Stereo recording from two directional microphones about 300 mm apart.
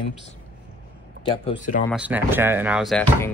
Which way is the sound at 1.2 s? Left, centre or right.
Centre.